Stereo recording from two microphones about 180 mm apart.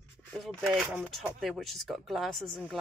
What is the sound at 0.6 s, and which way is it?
A woman's voice, centre (ahead or behind).